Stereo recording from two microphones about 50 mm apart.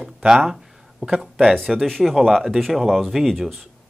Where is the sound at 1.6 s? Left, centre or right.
Centre.